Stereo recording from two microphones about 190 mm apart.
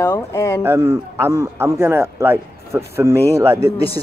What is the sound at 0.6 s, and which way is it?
A man's voice, 15° right (ahead or behind).